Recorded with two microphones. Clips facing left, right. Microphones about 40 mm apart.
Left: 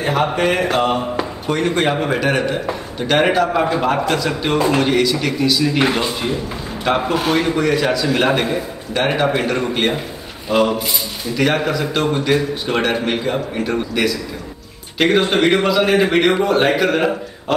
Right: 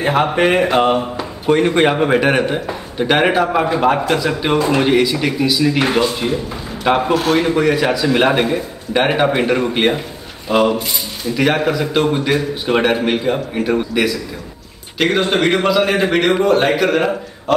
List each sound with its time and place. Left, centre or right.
0.0 s a man's voice: centre
5.8 s a man's voice: centre
6.8 s a man's voice: centre